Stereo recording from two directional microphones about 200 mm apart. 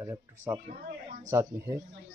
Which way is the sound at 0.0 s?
10° right (ahead or behind).